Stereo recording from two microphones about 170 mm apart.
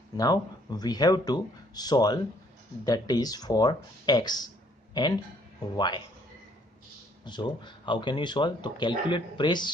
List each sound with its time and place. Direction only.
0.2 s speech: 25° left (ahead or behind)
7.2 s speech: 25° left (ahead or behind)